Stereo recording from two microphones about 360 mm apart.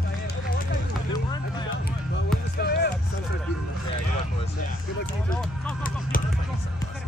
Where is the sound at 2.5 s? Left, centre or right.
Left.